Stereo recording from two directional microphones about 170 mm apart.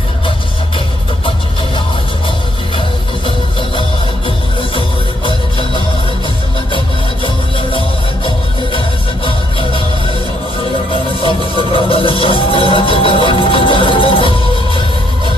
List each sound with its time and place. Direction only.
4.7 s music: 30° left (ahead or behind)
8.7 s music: 30° left (ahead or behind)